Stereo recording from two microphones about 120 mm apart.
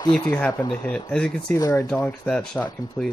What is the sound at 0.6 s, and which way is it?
Speech, 30° left (ahead or behind).